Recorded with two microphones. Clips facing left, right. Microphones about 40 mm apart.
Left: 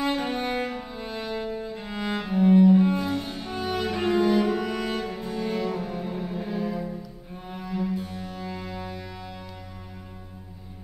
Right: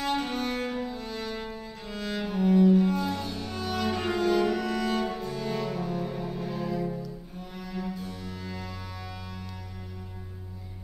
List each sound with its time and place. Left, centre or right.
0.0 s music: centre
5.2 s cello: centre
7.9 s music: left